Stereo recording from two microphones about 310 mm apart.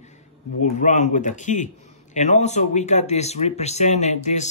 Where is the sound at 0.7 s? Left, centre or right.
Left.